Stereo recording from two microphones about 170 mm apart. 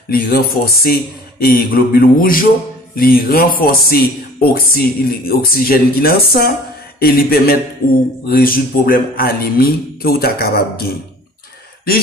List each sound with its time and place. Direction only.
0.1 s speech: 65° left (ahead or behind)